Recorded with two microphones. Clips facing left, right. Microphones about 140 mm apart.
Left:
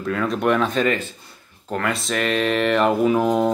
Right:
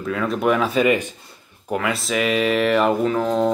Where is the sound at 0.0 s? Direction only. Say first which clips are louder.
Even; centre (ahead or behind).